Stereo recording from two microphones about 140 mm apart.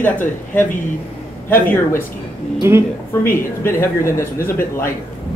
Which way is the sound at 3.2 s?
15° left (ahead or behind).